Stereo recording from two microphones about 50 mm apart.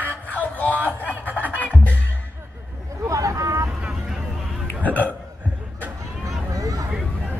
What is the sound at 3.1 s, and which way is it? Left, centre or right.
Hubbub, right.